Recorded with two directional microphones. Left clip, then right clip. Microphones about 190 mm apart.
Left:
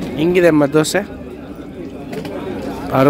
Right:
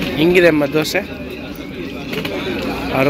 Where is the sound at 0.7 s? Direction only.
45° left (ahead or behind).